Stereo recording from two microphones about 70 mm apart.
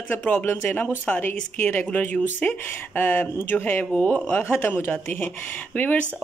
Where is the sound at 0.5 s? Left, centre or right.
Left.